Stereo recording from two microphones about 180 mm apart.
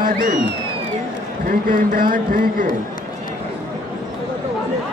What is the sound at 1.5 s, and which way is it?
Speech, 50° right (ahead or behind).